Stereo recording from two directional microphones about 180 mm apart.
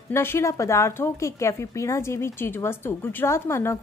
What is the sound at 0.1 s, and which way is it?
Speech, 15° left (ahead or behind).